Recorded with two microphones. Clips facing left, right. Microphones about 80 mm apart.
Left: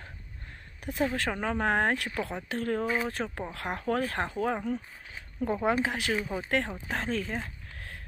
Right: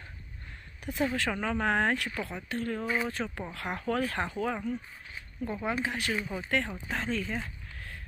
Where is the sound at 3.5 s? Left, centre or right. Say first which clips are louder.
Left 1 dB; left.